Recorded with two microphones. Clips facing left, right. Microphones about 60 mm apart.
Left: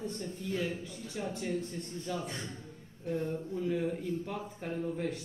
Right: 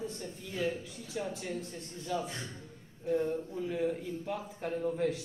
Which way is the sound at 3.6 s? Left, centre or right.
Centre.